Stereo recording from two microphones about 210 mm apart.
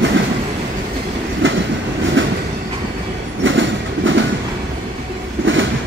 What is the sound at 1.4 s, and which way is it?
Train, 65° right (ahead or behind).